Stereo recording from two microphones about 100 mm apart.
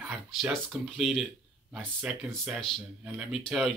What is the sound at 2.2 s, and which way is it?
Speech, centre (ahead or behind).